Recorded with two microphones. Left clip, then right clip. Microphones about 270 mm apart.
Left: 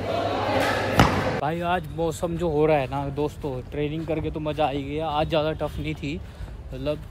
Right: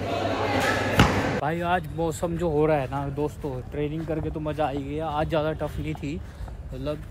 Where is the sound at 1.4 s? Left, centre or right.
Centre.